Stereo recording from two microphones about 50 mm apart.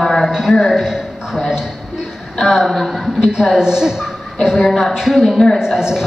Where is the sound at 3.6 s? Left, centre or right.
Centre.